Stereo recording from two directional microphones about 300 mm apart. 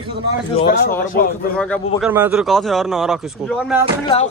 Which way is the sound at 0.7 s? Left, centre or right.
Left.